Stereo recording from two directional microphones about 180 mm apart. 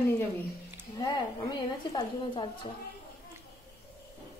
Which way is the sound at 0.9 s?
25° left (ahead or behind).